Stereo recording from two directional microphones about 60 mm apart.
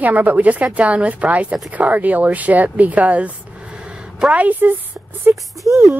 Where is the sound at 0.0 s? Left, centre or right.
Right.